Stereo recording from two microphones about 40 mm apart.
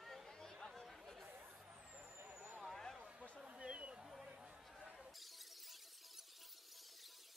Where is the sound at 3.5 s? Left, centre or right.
Right.